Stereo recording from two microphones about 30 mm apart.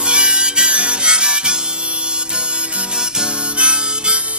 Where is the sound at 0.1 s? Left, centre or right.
Right.